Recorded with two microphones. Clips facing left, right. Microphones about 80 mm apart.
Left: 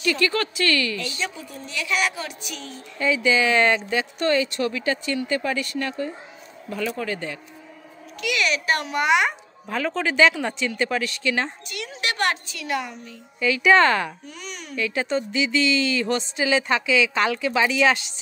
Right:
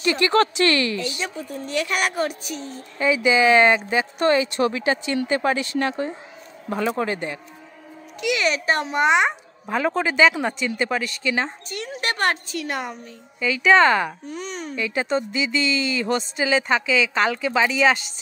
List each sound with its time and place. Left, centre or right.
0.0 s speech: right
1.3 s a woman's voice: right
3.0 s speech: centre
6.7 s a woman's voice: right
8.2 s a child's voice: right
10.8 s speech: centre
12.0 s a woman's voice: right
13.6 s speech: centre
14.3 s a woman's voice: right
14.8 s speech: centre